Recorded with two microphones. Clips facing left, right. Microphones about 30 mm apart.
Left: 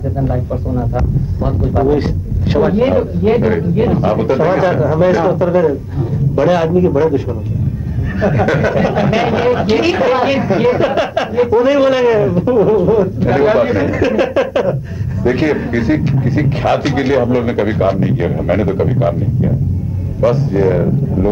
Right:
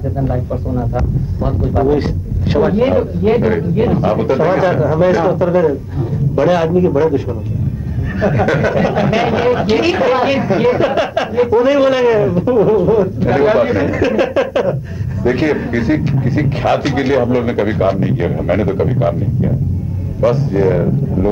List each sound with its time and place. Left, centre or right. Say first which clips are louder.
1.4 s speech: even; centre
8.2 s speech: even; centre